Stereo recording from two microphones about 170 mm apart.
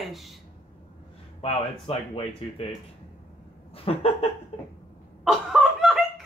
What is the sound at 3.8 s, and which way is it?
Speech, 35° left (ahead or behind).